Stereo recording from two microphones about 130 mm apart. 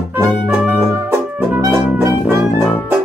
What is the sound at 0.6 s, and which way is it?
Music, 15° right (ahead or behind).